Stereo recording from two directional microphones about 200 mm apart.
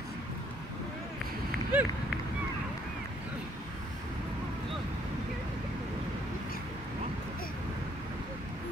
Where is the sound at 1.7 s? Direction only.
10° right (ahead or behind).